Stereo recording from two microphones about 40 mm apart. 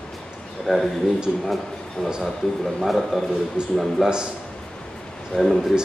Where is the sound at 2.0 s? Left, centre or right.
Centre.